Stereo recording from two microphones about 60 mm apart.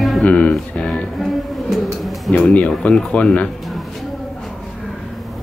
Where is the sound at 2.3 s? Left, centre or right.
Left.